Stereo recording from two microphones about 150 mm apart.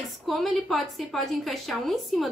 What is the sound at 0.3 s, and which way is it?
Speech, centre (ahead or behind).